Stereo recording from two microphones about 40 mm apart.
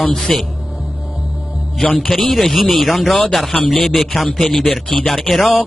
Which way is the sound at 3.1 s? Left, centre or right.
Centre.